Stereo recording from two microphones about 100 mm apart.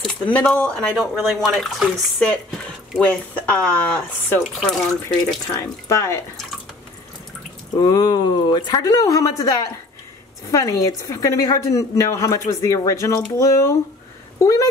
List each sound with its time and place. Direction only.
0.0 s speech: 10° left (ahead or behind)
5.6 s speech: 30° left (ahead or behind)
7.7 s a woman's voice: 40° left (ahead or behind)